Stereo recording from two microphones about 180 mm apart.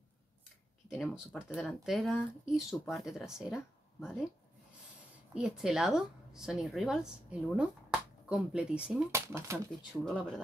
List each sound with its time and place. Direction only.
0.8 s speech: centre (ahead or behind)
5.3 s a woman's voice: centre (ahead or behind)
9.1 s speech: 15° right (ahead or behind)
10.0 s speech: 5° left (ahead or behind)